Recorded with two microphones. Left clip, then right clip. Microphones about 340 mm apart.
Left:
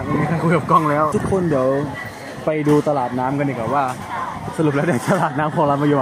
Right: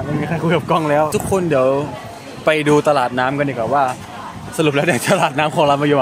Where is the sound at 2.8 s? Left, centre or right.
Right.